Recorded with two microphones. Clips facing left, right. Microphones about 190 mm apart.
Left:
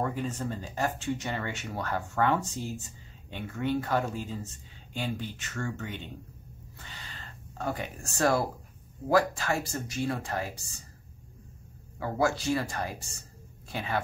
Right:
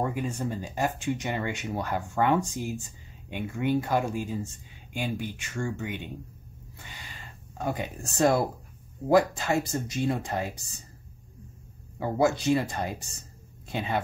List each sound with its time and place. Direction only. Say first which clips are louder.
0.0 s speech: right 2 dB; 15° right (ahead or behind)
6.9 s a sound: even; 15° right (ahead or behind)
9.1 s speech: right 3 dB; 20° right (ahead or behind)
12.0 s speech: right 3 dB; 20° right (ahead or behind)